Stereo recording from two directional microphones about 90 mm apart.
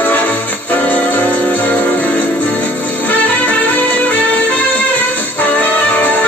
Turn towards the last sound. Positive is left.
turn(degrees=20)  # may be behind; listen again after turning